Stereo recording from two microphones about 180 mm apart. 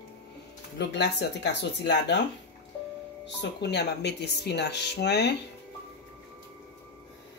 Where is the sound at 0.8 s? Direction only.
70° left (ahead or behind).